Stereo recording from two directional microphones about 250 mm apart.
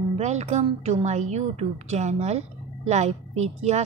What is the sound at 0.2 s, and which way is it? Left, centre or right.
A woman's voice, right.